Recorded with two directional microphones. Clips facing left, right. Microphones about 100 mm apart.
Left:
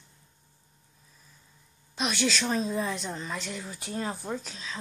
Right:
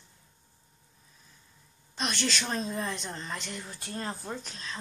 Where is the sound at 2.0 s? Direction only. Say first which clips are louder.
Left 4 dB; 5° left (ahead or behind).